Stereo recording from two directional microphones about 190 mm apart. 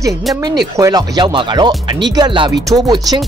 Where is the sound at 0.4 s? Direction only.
20° right (ahead or behind).